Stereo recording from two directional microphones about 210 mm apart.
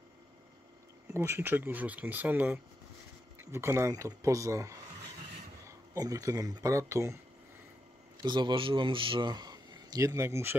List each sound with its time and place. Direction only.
1.1 s speech: 10° right (ahead or behind)
8.2 s a man's voice: 20° right (ahead or behind)